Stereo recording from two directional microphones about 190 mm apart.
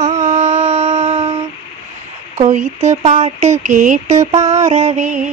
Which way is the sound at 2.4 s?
40° right (ahead or behind).